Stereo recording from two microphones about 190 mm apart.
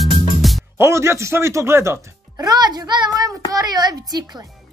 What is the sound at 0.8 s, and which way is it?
Speech, 15° right (ahead or behind).